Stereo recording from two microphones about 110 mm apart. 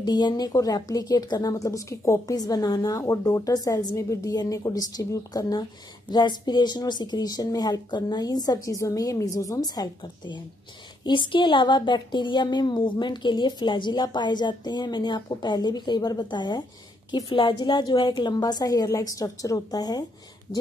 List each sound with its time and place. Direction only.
0.0 s a woman's voice: 40° left (ahead or behind)